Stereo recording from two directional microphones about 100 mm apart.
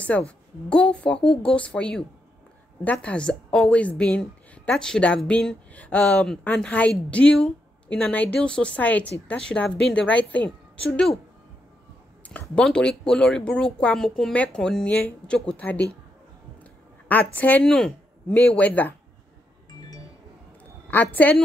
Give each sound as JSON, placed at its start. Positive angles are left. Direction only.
{"t": 0.1, "sound": "speech", "side_deg": 15}
{"t": 12.3, "sound": "speech", "side_deg": 10}
{"t": 17.1, "sound": "speech", "side_deg": 15}
{"t": 20.9, "sound": "speech", "side_deg": 15}